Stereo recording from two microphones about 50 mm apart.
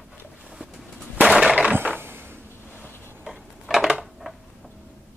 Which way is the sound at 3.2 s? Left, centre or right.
Centre.